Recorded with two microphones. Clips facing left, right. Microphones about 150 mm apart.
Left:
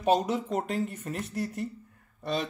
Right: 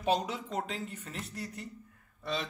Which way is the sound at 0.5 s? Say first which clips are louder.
Left 7 dB; 45° left (ahead or behind).